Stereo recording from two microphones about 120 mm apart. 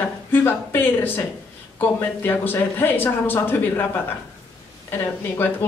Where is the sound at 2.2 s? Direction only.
15° left (ahead or behind).